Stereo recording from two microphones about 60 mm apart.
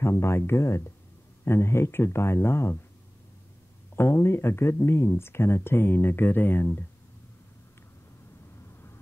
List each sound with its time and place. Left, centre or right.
0.0 s speech: left
3.9 s speech: left